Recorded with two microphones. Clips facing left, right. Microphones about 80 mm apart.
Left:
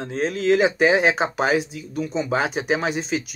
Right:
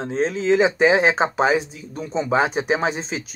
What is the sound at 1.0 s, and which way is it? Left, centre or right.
Speech, right.